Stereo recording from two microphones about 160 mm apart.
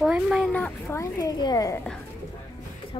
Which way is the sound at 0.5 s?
15° left (ahead or behind).